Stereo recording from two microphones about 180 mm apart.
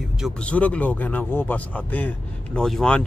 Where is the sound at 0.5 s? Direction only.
10° left (ahead or behind).